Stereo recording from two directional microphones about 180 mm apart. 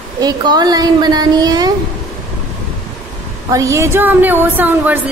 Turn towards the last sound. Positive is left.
turn(degrees=-10)  # may be behind; listen again after turning